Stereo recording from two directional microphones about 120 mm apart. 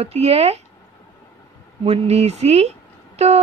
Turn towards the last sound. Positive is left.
turn(degrees=-65)  # may be behind; listen again after turning